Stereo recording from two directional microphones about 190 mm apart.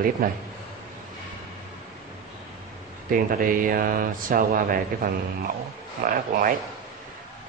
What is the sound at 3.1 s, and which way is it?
Speech, 45° right (ahead or behind).